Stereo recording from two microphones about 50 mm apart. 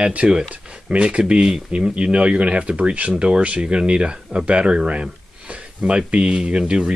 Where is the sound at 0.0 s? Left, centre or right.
Right.